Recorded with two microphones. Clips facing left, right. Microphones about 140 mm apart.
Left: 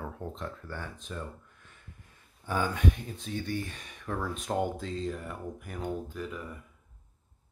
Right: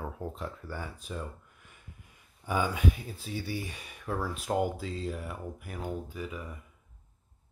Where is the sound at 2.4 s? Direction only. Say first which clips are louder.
Even; 10° right (ahead or behind).